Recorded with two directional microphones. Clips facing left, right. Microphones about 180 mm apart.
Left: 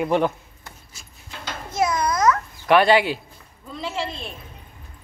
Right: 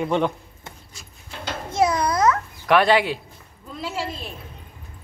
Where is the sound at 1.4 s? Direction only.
30° right (ahead or behind).